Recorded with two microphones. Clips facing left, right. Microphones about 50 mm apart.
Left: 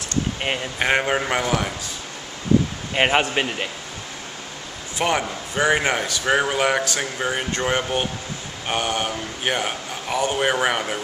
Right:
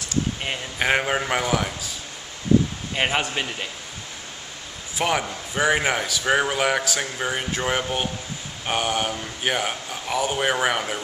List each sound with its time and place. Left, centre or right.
0.7 s speech: centre
2.9 s a man's voice: centre
4.9 s speech: centre